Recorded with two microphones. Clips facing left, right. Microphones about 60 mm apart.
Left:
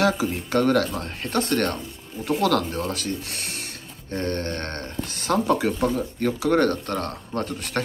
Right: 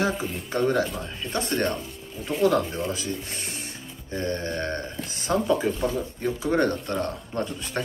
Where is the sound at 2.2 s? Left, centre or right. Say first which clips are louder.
Even; left.